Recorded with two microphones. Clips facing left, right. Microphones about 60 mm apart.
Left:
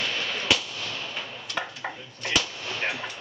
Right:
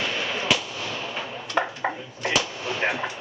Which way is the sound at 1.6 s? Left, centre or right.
Right.